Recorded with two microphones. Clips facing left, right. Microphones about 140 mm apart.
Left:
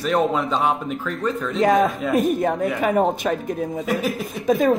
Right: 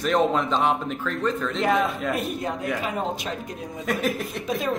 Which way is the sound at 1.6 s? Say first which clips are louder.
Left 6 dB; 45° left (ahead or behind).